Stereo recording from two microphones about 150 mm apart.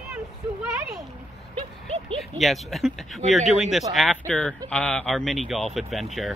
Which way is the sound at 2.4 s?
Centre (ahead or behind).